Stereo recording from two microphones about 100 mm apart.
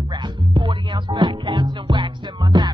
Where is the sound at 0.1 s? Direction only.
50° right (ahead or behind).